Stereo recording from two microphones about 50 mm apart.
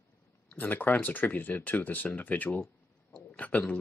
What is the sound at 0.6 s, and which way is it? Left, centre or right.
Speech, left.